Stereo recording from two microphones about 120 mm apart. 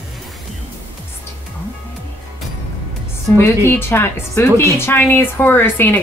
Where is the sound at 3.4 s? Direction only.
20° left (ahead or behind).